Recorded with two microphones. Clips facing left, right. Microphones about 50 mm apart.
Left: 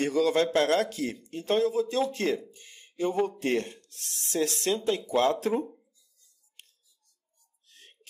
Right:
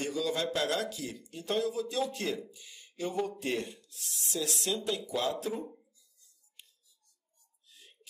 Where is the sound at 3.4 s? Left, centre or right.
Left.